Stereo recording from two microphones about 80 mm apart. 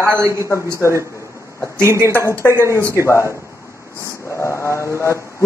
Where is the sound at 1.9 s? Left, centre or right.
Left.